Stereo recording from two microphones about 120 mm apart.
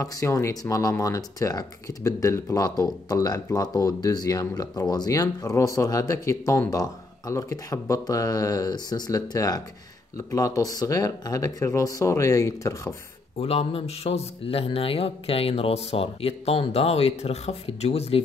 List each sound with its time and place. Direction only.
0.0 s speech: 25° left (ahead or behind)
13.4 s speech: 60° left (ahead or behind)